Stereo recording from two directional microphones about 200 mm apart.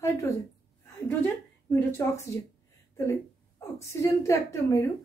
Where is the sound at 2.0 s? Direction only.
15° left (ahead or behind).